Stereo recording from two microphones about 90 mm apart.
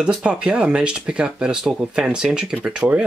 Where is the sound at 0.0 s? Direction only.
10° right (ahead or behind).